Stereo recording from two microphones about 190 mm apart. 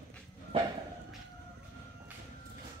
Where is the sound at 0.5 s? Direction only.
30° right (ahead or behind).